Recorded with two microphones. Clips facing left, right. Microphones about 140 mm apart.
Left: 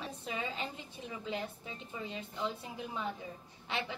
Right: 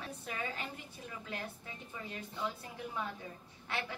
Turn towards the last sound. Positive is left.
turn(degrees=20)  # may be behind; listen again after turning